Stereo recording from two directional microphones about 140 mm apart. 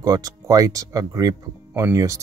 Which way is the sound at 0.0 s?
25° right (ahead or behind).